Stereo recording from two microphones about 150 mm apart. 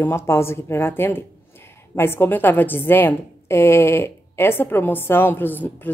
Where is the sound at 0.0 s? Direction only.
15° left (ahead or behind).